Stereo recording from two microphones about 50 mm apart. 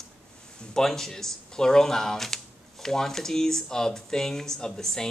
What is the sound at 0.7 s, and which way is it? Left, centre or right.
Speech, centre.